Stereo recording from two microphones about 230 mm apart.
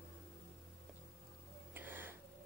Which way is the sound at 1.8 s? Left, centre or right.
Centre.